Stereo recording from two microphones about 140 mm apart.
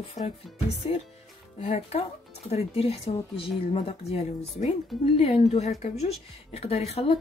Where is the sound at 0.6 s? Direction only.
45° left (ahead or behind).